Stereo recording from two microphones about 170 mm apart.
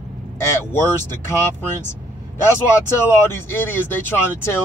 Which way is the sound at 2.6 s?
15° left (ahead or behind).